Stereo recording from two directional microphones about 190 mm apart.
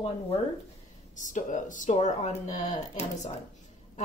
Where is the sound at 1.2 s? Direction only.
40° left (ahead or behind).